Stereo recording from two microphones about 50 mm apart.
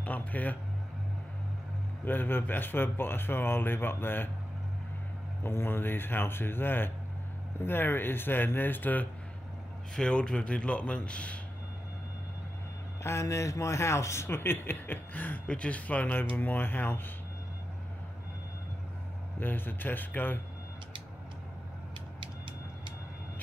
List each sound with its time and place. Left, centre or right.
0.0 s speech: left
2.0 s speech: left
5.4 s speech: left
9.9 s speech: centre
13.0 s speech: left
15.4 s speech: left
19.4 s speech: left